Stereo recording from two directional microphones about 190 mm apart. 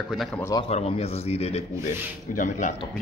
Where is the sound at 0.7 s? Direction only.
30° left (ahead or behind).